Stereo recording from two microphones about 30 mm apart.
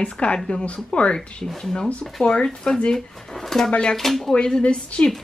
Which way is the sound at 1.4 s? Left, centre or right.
Centre.